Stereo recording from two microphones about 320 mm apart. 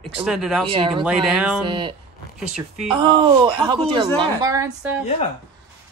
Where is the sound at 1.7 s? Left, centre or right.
Centre.